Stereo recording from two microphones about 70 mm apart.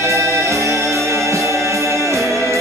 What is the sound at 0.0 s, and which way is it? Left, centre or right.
Music, right.